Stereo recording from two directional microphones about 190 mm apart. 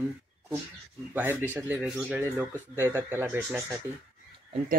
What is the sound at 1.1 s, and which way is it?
Speech, 10° right (ahead or behind).